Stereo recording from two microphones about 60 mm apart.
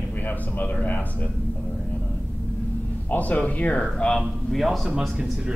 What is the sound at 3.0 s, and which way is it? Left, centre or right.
A man's voice, left.